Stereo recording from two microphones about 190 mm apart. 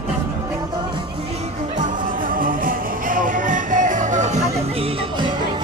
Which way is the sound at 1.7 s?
45° right (ahead or behind).